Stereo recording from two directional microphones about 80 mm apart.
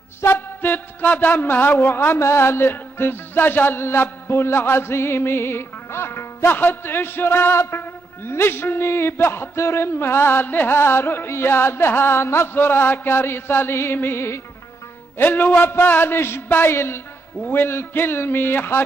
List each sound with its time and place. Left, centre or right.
0.2 s speech: left